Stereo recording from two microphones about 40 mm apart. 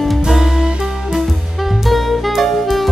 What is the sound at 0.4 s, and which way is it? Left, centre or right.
Music, centre.